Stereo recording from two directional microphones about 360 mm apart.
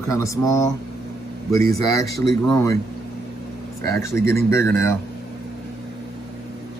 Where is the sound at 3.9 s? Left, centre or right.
Centre.